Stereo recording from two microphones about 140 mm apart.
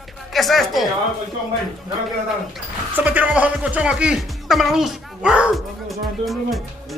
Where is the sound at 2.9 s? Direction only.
10° right (ahead or behind).